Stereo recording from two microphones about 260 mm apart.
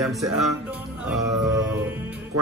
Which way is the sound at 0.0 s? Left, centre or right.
Centre.